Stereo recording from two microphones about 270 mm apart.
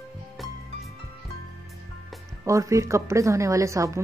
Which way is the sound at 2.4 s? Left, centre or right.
Centre.